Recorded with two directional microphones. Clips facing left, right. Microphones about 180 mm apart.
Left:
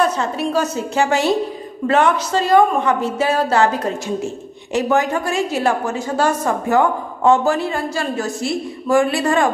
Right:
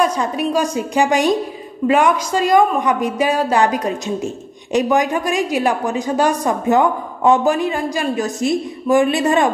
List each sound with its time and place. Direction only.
0.0 s a woman's voice: 15° right (ahead or behind)